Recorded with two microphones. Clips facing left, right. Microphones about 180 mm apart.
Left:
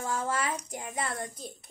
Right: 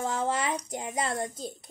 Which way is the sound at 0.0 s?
20° right (ahead or behind).